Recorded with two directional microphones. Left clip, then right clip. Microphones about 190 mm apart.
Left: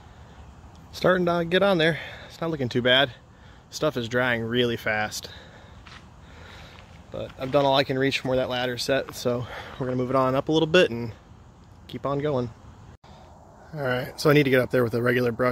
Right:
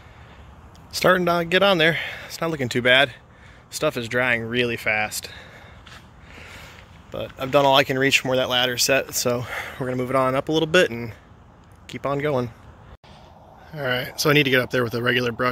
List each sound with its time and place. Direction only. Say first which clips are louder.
0.9 s speech: right 4 dB; centre (ahead or behind)
6.6 s a sound: right 3 dB; centre (ahead or behind)
7.3 s speech: right 4 dB; 5° right (ahead or behind)
10.1 s speech: right 2 dB; 10° left (ahead or behind)
13.7 s speech: right 2 dB; 10° left (ahead or behind)